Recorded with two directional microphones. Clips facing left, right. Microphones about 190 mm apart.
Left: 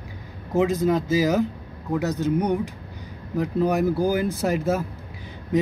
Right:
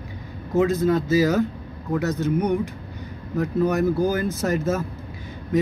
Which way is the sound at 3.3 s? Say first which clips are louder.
Even; 10° left (ahead or behind).